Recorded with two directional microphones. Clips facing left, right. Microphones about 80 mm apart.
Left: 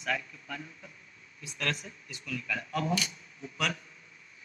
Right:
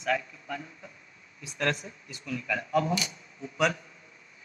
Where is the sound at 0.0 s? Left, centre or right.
Right.